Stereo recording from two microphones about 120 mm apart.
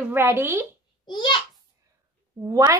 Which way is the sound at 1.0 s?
40° left (ahead or behind).